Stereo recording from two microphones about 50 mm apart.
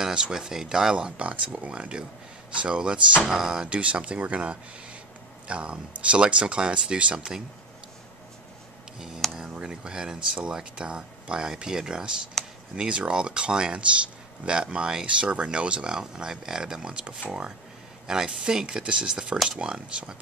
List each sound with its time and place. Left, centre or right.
0.0 s speech: centre
8.9 s speech: centre
18.0 s speech: centre
19.3 s speech: centre
19.6 s speech: centre